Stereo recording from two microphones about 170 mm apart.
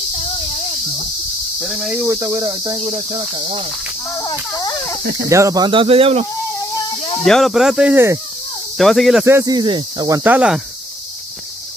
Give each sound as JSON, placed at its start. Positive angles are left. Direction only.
{"t": 1.6, "sound": "speech", "side_deg": -5}
{"t": 2.0, "sound": "speech", "side_deg": -15}
{"t": 3.4, "sound": "speech", "side_deg": -35}
{"t": 4.2, "sound": "speech", "side_deg": 25}
{"t": 5.3, "sound": "speech", "side_deg": -20}
{"t": 7.2, "sound": "speech", "side_deg": 0}
{"t": 8.7, "sound": "speech", "side_deg": 0}
{"t": 9.2, "sound": "speech", "side_deg": -15}